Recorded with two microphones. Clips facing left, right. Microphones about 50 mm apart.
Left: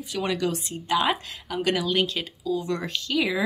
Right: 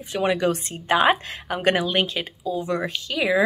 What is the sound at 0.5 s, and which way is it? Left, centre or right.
A woman's voice, right.